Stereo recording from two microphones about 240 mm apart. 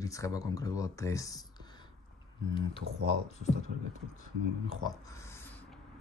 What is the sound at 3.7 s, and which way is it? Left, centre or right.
Speech, right.